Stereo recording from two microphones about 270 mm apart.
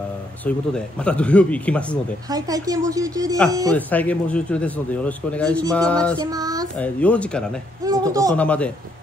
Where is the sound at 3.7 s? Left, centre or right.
Centre.